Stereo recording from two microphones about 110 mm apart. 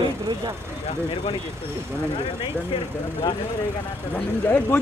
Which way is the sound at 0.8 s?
60° left (ahead or behind).